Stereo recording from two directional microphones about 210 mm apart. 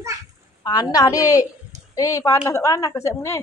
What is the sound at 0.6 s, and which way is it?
Speech, 20° left (ahead or behind).